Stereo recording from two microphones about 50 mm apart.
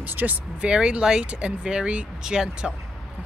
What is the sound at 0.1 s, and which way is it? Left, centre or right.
Speech, right.